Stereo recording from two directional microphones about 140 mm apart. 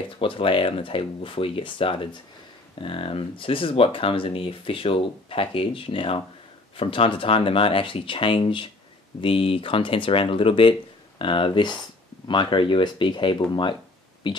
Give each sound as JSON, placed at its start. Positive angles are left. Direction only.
{"t": 0.2, "sound": "speech", "side_deg": 40}